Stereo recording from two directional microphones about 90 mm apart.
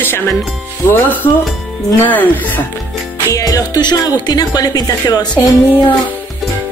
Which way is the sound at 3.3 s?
45° left (ahead or behind).